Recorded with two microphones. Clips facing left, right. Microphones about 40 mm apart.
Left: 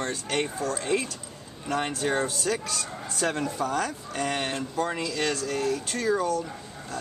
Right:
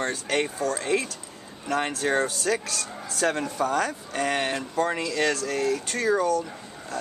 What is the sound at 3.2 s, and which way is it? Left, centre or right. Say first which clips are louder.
Speech: right 3 dB; centre.